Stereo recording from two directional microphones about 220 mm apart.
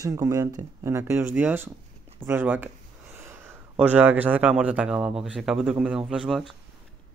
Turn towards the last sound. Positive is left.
turn(degrees=0)  # may be behind; listen again after turning